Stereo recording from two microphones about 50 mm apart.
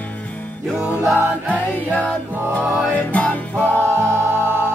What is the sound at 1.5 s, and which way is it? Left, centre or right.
Music, left.